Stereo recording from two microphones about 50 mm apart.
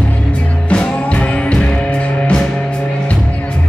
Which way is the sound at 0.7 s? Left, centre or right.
Left.